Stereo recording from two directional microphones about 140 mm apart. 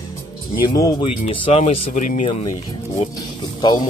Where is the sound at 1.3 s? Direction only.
45° left (ahead or behind).